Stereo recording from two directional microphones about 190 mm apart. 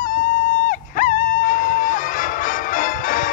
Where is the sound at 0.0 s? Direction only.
45° left (ahead or behind).